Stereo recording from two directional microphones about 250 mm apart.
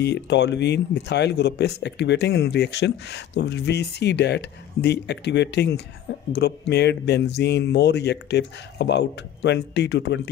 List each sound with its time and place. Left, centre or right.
0.0 s speech: left